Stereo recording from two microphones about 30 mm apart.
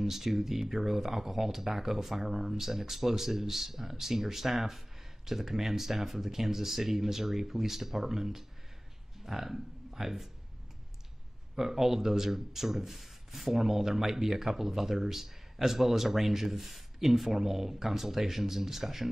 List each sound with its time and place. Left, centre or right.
0.0 s speech: centre
11.5 s speech: centre